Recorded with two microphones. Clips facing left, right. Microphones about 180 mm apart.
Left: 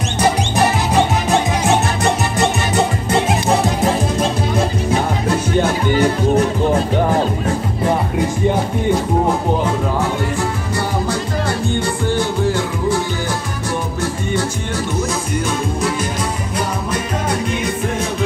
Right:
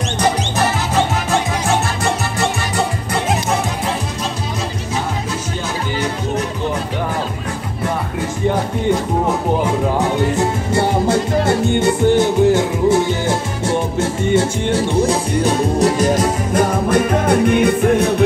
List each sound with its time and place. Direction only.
0.2 s music: 15° left (ahead or behind)
4.2 s music: 55° left (ahead or behind)
9.9 s music: 20° right (ahead or behind); by 18.1 s 60° right (ahead or behind)